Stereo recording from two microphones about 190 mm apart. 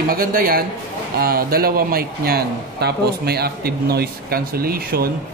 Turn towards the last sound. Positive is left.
turn(degrees=-55)  # may be behind; listen again after turning